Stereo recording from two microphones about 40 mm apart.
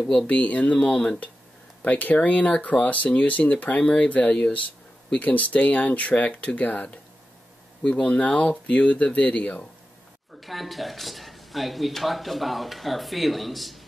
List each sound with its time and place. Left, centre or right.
0.3 s speech: left
0.7 s speech: left
1.8 s speech: left
7.9 s speech: left
10.4 s speech: centre